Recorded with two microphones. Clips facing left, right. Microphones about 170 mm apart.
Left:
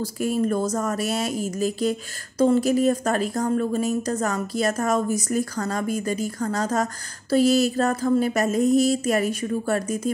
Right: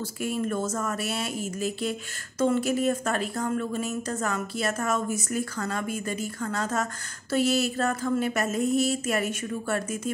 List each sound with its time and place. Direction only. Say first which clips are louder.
0.2 s speech: left 5 dB; 40° left (ahead or behind)